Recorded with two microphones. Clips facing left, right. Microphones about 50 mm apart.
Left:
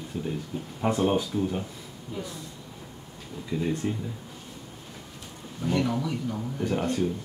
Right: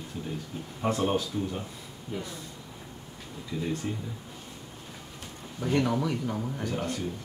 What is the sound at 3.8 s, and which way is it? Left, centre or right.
Speech, centre.